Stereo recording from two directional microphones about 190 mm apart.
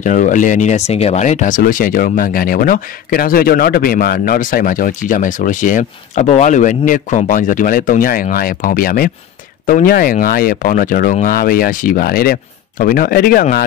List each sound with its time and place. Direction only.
0.0 s speech: 40° left (ahead or behind)